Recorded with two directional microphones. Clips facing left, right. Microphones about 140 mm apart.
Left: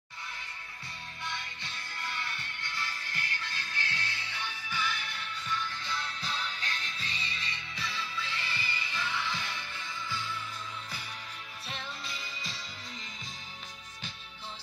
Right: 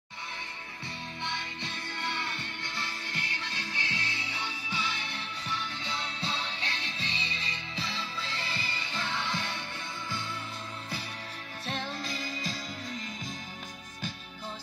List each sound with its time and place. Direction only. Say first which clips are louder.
3.5 s music: right 3 dB; 20° right (ahead or behind)
11.6 s music: right 7 dB; 35° right (ahead or behind)